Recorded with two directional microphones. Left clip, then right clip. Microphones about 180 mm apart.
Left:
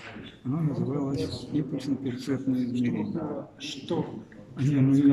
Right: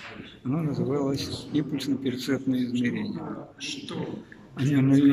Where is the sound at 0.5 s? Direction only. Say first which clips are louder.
Right 3 dB; 5° left (ahead or behind).